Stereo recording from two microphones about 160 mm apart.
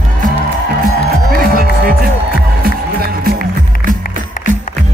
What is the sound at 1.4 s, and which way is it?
Music, 65° right (ahead or behind).